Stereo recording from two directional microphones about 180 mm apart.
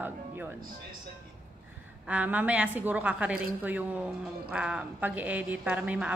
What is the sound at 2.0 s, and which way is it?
A woman's voice, 10° right (ahead or behind).